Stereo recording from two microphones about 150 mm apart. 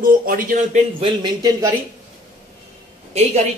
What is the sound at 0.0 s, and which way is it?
Speech, 70° right (ahead or behind).